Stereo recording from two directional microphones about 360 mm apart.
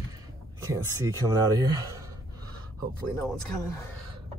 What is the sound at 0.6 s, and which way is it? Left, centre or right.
Speech, centre.